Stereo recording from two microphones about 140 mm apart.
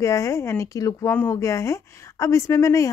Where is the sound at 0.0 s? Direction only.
20° left (ahead or behind).